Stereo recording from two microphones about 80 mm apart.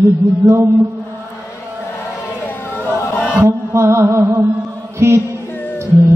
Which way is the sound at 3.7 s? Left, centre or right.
Right.